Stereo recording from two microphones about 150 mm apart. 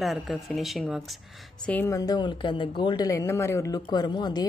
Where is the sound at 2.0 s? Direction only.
25° left (ahead or behind).